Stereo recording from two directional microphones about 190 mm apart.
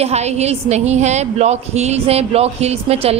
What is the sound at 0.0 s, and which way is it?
A woman's voice, 35° right (ahead or behind).